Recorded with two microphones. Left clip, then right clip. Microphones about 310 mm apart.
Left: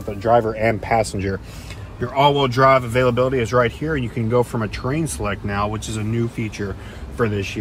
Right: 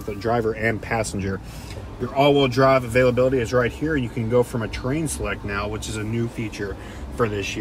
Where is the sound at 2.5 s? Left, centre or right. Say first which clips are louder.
Left 2 dB; left.